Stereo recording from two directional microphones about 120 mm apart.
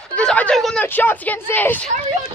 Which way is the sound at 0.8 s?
15° left (ahead or behind).